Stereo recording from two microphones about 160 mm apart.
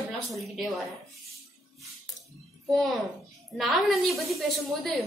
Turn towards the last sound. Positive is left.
turn(degrees=0)  # may be behind; listen again after turning